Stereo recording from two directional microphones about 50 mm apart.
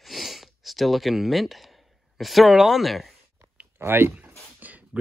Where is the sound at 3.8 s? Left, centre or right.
Right.